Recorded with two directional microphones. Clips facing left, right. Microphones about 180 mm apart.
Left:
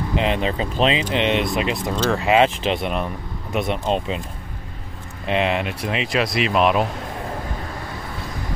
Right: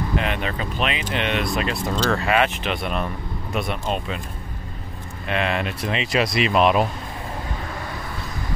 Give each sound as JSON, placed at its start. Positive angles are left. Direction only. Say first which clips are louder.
{"t": 0.1, "sound": "speech", "louder": "left 4 dB", "side_deg": 25}
{"t": 5.2, "sound": "speech", "louder": "left 3 dB", "side_deg": 20}